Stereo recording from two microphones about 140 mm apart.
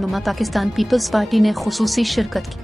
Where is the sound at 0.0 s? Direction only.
Centre (ahead or behind).